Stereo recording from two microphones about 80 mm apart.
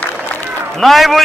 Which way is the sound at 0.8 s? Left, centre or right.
Centre.